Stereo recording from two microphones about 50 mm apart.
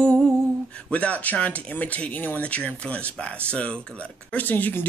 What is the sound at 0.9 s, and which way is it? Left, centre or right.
Speech, left.